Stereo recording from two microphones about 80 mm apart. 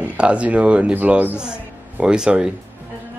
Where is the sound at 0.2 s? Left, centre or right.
Centre.